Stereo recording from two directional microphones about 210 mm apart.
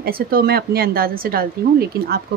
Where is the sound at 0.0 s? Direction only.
45° right (ahead or behind).